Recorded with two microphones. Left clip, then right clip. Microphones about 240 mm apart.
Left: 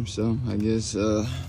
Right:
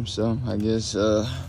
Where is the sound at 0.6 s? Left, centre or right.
Centre.